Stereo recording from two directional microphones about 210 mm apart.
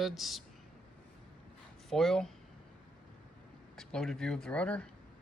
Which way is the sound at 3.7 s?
5° left (ahead or behind).